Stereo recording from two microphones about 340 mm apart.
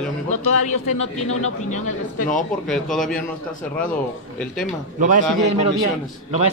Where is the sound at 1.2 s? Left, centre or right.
Left.